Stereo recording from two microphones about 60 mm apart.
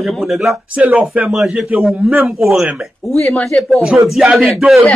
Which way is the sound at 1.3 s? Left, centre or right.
Centre.